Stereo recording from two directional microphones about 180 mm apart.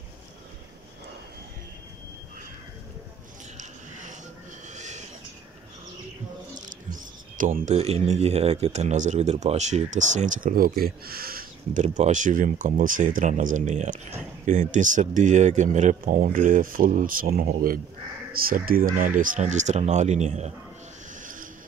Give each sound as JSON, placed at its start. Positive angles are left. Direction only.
{"t": 3.5, "sound": "a sound", "side_deg": -45}
{"t": 7.3, "sound": "speech", "side_deg": -50}
{"t": 21.2, "sound": "vehicle", "side_deg": -45}